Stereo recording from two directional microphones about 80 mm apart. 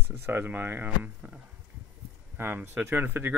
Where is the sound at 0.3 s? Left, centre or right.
Right.